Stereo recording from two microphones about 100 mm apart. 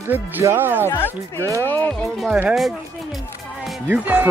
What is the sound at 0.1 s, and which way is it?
Speech, 25° right (ahead or behind).